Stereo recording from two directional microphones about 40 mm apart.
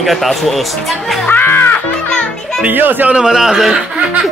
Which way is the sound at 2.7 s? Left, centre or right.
Right.